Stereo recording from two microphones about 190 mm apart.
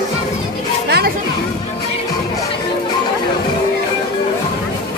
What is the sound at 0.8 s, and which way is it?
Children playing, 60° right (ahead or behind).